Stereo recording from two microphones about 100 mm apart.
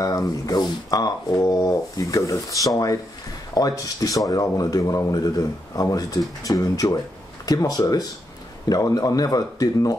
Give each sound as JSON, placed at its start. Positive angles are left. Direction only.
{"t": 0.0, "sound": "speech", "side_deg": 35}